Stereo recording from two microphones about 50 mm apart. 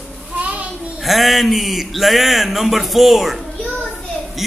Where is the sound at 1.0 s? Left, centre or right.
Centre.